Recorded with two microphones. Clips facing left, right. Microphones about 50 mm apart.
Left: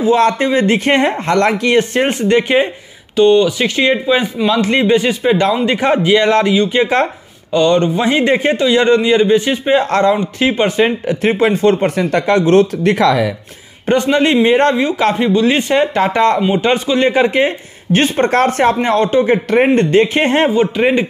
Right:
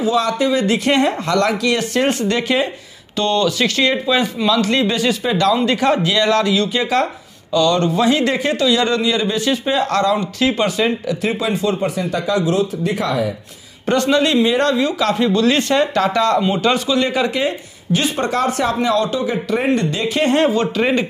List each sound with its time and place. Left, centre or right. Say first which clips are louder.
0.0 s speech: left 5 dB; left
3.2 s a man's voice: left 7 dB; centre; by 13.3 s left
13.8 s a man's voice: left 3 dB; left